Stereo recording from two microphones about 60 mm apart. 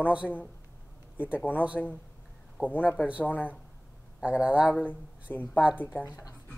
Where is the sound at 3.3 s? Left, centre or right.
Left.